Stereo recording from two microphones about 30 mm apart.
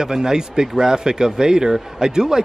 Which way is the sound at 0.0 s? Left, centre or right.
Right.